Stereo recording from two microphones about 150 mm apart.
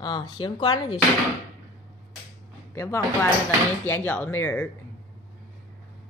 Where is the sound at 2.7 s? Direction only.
15° left (ahead or behind).